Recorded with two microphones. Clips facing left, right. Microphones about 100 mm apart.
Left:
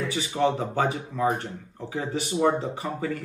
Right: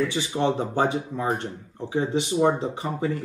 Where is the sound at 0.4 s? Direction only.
25° right (ahead or behind).